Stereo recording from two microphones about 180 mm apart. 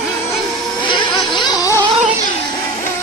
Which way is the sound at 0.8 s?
25° left (ahead or behind).